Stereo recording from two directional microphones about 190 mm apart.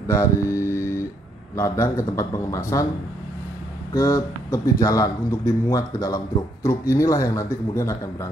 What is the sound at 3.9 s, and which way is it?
Speech, 15° left (ahead or behind).